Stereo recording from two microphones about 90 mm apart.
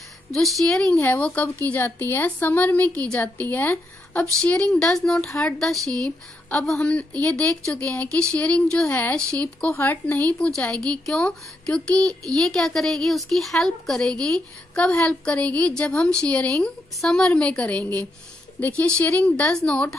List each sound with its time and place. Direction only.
0.3 s a woman's voice: centre (ahead or behind)